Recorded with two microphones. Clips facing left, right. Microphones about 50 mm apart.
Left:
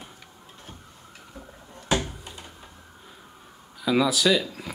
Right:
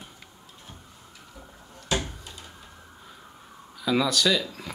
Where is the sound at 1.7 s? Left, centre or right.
Left.